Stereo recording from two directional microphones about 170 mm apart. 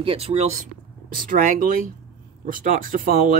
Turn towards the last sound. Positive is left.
turn(degrees=-55)  # may be behind; listen again after turning